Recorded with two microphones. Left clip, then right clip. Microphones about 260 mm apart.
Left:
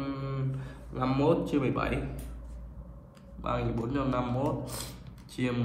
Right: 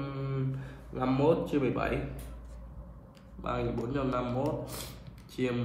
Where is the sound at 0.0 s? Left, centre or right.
Left.